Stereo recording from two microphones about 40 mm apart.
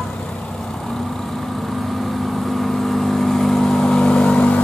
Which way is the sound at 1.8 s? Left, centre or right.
Centre.